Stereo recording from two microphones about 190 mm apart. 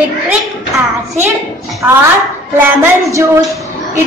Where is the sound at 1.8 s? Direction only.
5° right (ahead or behind).